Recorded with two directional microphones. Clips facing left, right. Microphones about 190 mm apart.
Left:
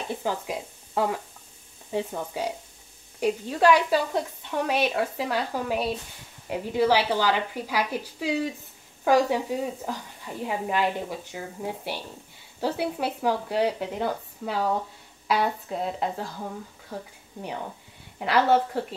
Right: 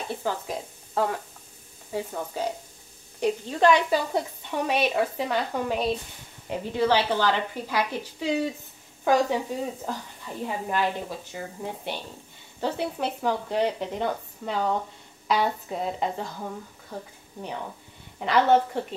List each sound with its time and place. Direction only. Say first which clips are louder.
0.2 s speech: even; 15° left (ahead or behind)
4.1 s speech: even; 5° right (ahead or behind)
18.2 s speech: right 1 dB; 5° left (ahead or behind)